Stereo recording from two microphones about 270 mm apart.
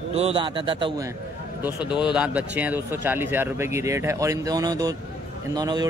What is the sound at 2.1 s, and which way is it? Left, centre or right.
Speech, centre.